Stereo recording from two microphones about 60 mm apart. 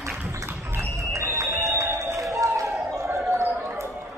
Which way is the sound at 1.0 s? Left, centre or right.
Right.